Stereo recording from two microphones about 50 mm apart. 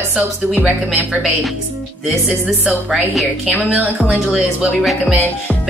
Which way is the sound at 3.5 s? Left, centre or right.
Right.